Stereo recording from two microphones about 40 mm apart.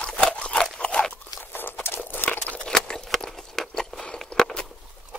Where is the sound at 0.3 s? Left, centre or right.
Left.